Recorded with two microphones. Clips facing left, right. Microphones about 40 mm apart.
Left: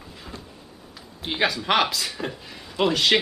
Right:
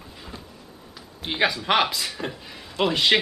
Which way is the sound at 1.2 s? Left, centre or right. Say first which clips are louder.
Right 1 dB; centre.